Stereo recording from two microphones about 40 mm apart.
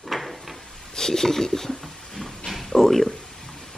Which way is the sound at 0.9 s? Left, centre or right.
Centre.